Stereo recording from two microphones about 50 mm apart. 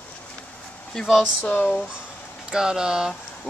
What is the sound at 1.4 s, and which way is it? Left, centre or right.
Speech, left.